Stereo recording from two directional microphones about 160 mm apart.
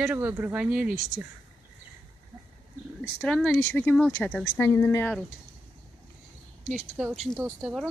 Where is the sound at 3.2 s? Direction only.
5° left (ahead or behind).